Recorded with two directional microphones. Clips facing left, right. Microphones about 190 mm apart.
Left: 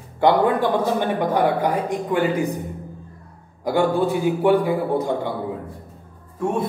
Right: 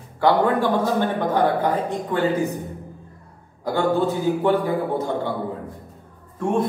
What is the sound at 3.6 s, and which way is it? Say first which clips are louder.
Speech: left 1 dB; 15° left (ahead or behind).